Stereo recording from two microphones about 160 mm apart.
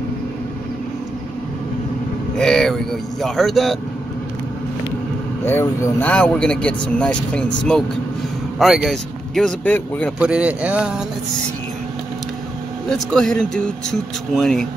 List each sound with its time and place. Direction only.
2.3 s speech: 5° left (ahead or behind)
5.4 s speech: 15° left (ahead or behind)
10.1 s speech: 5° right (ahead or behind)
12.9 s speech: 5° left (ahead or behind)